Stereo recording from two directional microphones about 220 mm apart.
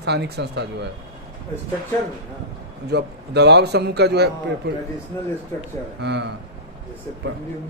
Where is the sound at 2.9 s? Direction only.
50° right (ahead or behind).